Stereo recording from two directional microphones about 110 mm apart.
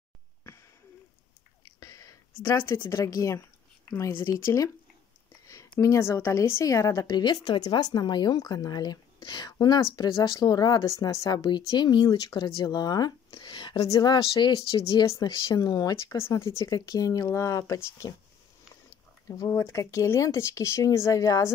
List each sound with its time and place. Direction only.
1.8 s whispering: 30° left (ahead or behind)
2.4 s speech: 25° left (ahead or behind); by 13.7 s 45° left (ahead or behind)
13.7 s speech: 30° left (ahead or behind)
16.2 s speech: 25° left (ahead or behind)
19.2 s speech: 30° left (ahead or behind)